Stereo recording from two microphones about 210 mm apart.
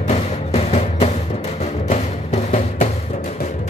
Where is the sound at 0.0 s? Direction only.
30° left (ahead or behind).